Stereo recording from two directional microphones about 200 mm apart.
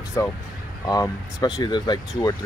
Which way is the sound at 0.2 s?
15° left (ahead or behind).